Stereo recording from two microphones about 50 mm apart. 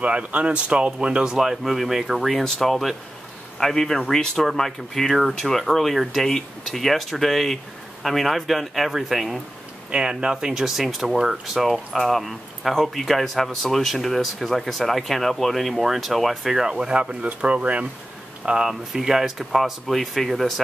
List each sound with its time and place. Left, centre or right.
0.0 s speech: right; by 9.4 s centre
9.8 s speech: centre
18.4 s speech: centre